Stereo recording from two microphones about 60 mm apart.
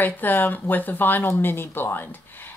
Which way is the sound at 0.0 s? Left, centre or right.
Left.